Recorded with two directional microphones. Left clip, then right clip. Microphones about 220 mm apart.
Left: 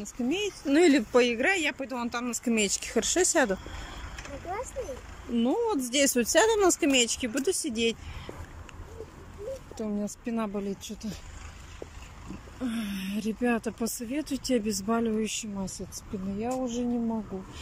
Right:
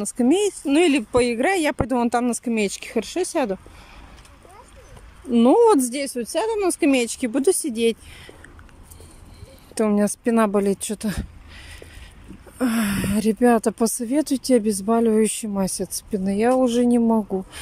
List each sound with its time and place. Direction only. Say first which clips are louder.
0.0 s speech: right 11 dB; 30° right (ahead or behind)
0.7 s speech: right 1 dB; 10° right (ahead or behind)
5.3 s speech: right 13 dB; 30° right (ahead or behind)
6.0 s speech: left 1 dB; centre (ahead or behind); by 8.0 s 20° right (ahead or behind)
9.8 s speech: right 18 dB; 40° right (ahead or behind)
12.5 s speech: right 12 dB; 35° right (ahead or behind)